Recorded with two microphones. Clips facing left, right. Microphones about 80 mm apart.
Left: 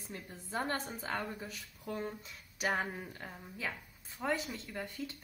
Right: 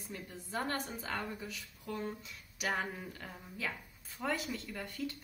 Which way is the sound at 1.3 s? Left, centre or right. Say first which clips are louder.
Even; left.